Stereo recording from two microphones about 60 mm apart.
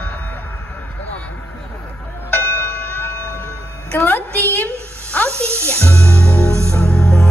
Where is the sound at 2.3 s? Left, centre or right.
Left.